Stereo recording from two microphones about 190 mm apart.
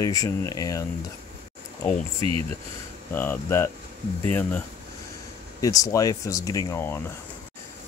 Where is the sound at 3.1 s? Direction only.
10° left (ahead or behind).